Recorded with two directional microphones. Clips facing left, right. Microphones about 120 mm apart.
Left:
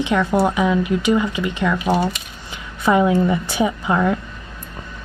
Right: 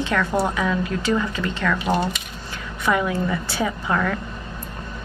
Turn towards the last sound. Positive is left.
turn(degrees=20)  # may be behind; listen again after turning